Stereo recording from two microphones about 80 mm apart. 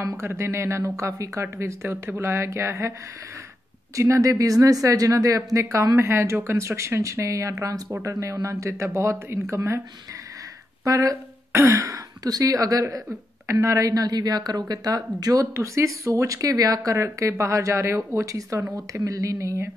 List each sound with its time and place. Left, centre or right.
0.2 s speech: right
3.9 s speech: right
10.8 s a woman's voice: right
15.5 s speech: right